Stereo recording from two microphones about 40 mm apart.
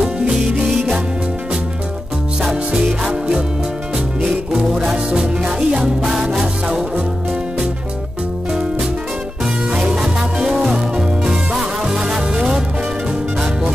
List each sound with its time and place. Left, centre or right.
0.7 s music: centre
2.4 s music: centre
4.5 s music: centre
9.9 s music: centre